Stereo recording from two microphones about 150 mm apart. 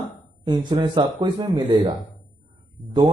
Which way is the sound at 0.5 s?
30° right (ahead or behind).